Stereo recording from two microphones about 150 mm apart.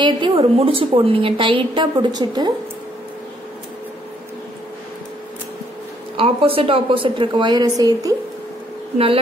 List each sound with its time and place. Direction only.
0.0 s a woman's voice: 35° right (ahead or behind)
6.1 s a woman's voice: 40° right (ahead or behind)
8.9 s a woman's voice: 40° right (ahead or behind)